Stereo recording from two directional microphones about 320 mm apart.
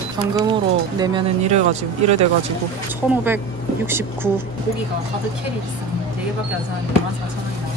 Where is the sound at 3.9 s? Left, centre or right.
Centre.